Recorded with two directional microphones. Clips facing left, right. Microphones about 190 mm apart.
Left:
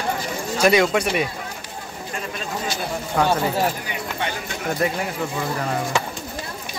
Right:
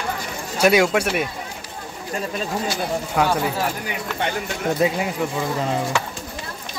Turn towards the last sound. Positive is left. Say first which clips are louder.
# right 2 dB
turn(degrees=-15)  # may be behind; listen again after turning